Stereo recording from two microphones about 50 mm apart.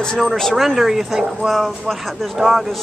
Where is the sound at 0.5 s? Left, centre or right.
Centre.